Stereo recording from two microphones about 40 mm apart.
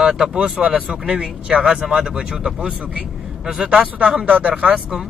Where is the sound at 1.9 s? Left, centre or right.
Centre.